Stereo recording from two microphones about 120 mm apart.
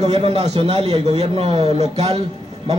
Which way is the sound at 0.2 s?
50° right (ahead or behind).